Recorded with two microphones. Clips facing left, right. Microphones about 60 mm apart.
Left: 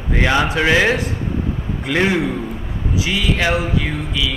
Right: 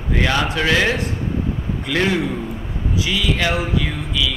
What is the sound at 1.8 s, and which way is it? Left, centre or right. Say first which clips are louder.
Speech: left 2 dB; centre.